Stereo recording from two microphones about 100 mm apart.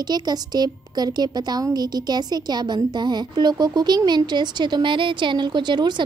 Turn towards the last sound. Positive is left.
turn(degrees=-50)  # may be behind; listen again after turning